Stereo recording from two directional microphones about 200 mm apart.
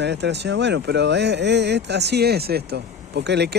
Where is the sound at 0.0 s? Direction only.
60° right (ahead or behind).